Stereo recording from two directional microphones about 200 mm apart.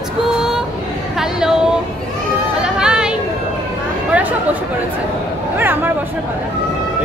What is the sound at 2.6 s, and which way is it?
Chatter, 5° right (ahead or behind).